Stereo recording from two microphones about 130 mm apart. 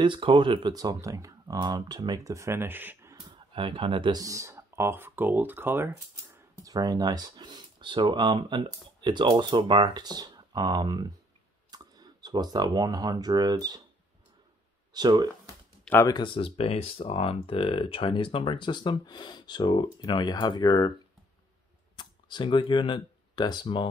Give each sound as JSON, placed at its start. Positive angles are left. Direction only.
{"t": 0.0, "sound": "speech", "side_deg": -40}
{"t": 0.7, "sound": "speech", "side_deg": -25}
{"t": 3.1, "sound": "speech", "side_deg": -35}
{"t": 6.6, "sound": "speech", "side_deg": -30}
{"t": 15.0, "sound": "speech", "side_deg": -35}
{"t": 16.1, "sound": "speech", "side_deg": 40}
{"t": 21.9, "sound": "speech", "side_deg": 35}